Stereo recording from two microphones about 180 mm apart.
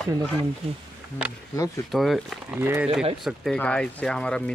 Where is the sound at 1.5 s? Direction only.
15° left (ahead or behind).